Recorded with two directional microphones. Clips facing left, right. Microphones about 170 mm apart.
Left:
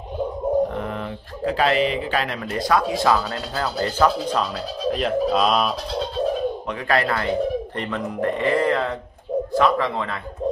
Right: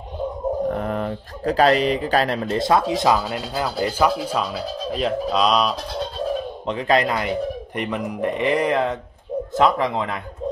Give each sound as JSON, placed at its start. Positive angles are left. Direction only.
{"t": 0.7, "sound": "speech", "side_deg": -45}
{"t": 4.9, "sound": "speech", "side_deg": 0}
{"t": 6.7, "sound": "speech", "side_deg": -20}